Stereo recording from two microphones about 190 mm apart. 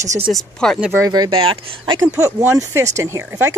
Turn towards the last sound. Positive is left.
turn(degrees=-10)  # may be behind; listen again after turning